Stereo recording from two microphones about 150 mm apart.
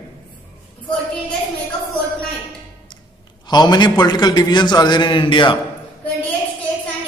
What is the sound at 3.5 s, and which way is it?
A man's voice, 30° left (ahead or behind).